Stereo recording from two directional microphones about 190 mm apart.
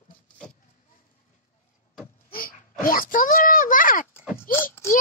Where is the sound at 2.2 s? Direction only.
50° left (ahead or behind).